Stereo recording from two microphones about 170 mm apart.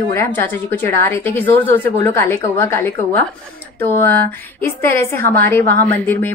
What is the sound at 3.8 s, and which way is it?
Speech, 10° left (ahead or behind).